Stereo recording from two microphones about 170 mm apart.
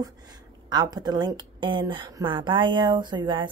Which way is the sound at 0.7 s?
25° right (ahead or behind).